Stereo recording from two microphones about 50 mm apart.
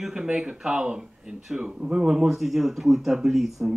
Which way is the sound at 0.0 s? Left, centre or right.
Centre.